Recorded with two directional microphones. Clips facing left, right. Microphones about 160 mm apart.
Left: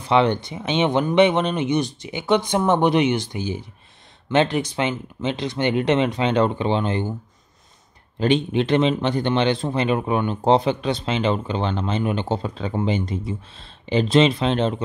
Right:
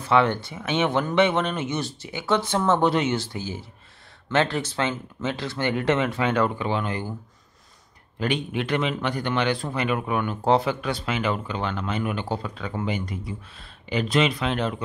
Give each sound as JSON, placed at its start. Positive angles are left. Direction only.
{"t": 0.0, "sound": "speech", "side_deg": 20}
{"t": 8.2, "sound": "speech", "side_deg": 25}